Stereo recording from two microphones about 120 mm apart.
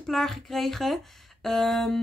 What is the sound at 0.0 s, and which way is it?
Speech, centre (ahead or behind).